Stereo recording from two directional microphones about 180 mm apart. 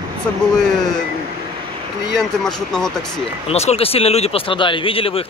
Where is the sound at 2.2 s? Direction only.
5° left (ahead or behind).